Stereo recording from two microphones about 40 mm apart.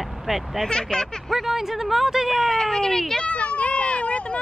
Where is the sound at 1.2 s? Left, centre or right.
Centre.